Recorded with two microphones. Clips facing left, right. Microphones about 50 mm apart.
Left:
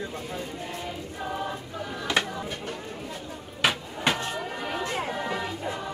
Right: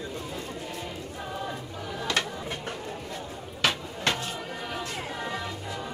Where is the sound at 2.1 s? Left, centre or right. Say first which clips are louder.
Left 3 dB; centre.